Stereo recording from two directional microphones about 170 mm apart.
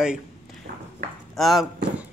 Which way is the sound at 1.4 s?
Centre (ahead or behind).